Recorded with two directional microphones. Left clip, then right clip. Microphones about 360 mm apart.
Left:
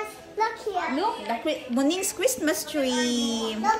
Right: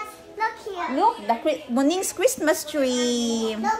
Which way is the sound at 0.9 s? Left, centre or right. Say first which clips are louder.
Right 6 dB; centre.